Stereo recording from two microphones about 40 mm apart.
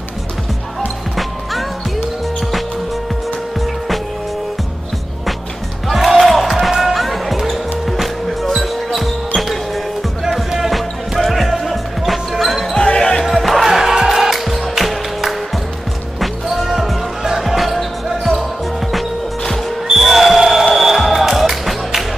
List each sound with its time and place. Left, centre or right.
5.9 s music: centre
11.1 s basketball bounce: centre
12.7 s basketball bounce: centre
13.2 s music: centre
19.9 s music: centre